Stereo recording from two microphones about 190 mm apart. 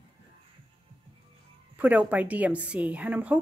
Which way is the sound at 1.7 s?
10° right (ahead or behind).